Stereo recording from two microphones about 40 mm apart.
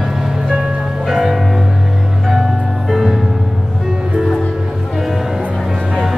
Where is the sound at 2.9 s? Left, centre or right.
Centre.